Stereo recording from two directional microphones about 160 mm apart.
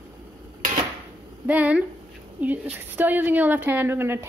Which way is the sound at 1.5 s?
10° right (ahead or behind).